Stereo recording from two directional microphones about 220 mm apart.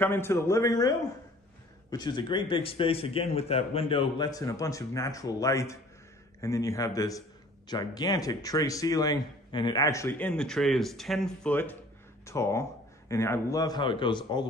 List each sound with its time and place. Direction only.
0.0 s a man's voice: 10° left (ahead or behind)